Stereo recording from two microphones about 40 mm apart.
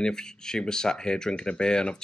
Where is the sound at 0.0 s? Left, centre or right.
Centre.